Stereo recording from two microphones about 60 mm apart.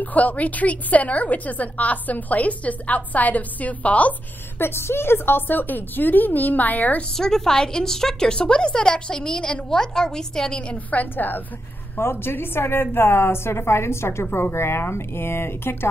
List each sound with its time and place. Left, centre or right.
0.0 s a woman's voice: left
4.6 s speech: left
7.1 s a woman's voice: centre
10.9 s speech: left
12.0 s a woman's voice: left